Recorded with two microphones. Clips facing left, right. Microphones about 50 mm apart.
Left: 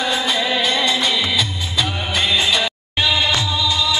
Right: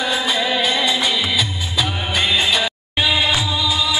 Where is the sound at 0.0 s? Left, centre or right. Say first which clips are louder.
Even; centre.